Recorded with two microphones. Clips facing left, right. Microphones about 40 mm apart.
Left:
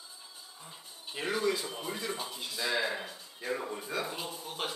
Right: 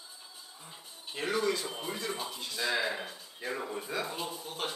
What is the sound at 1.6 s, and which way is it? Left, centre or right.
Speech, centre.